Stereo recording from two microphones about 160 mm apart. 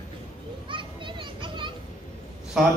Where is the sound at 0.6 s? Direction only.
30° right (ahead or behind).